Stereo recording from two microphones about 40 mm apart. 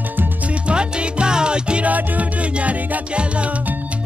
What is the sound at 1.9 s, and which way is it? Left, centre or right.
Music, right.